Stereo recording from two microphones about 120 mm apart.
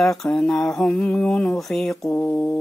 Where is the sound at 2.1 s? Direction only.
15° left (ahead or behind).